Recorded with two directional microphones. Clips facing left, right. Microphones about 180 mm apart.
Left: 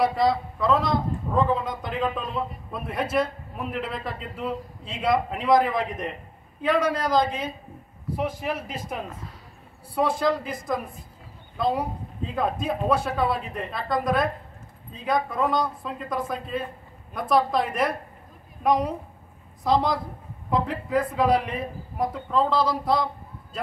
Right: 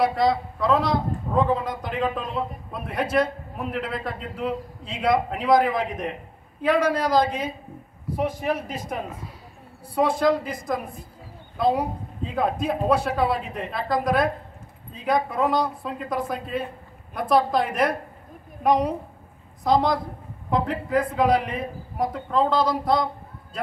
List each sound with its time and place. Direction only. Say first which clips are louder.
0.0 s a man's voice: right 1 dB; centre (ahead or behind)